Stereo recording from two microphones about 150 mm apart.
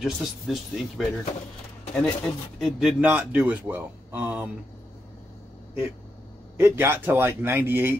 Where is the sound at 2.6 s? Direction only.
Centre (ahead or behind).